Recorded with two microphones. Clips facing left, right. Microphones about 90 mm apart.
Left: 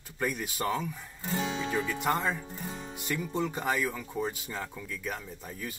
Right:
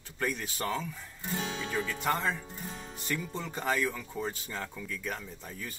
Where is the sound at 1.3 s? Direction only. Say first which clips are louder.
Left 4 dB; 30° left (ahead or behind).